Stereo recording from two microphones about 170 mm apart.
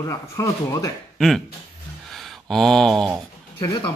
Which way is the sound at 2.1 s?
Centre (ahead or behind).